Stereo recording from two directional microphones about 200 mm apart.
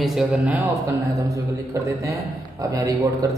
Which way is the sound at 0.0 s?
Centre (ahead or behind).